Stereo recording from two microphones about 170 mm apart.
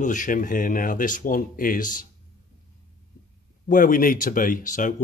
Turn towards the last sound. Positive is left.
turn(degrees=50)  # may be behind; listen again after turning